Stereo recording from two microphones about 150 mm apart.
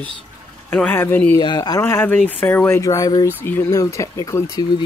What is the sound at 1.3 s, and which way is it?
Speech, 30° left (ahead or behind).